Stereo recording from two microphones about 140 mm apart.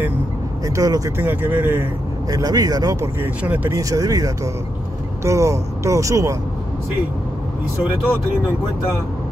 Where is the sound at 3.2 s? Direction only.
10° right (ahead or behind).